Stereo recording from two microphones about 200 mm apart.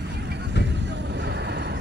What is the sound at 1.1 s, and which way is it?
Vehicle, 60° right (ahead or behind).